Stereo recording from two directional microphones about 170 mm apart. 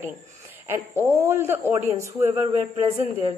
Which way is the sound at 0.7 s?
15° right (ahead or behind).